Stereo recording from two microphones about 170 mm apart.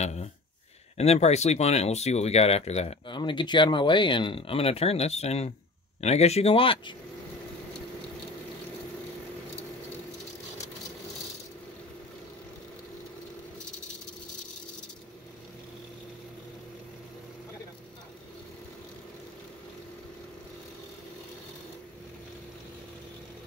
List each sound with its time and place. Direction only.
0.9 s speech: 40° left (ahead or behind)
3.2 s speech: 25° left (ahead or behind)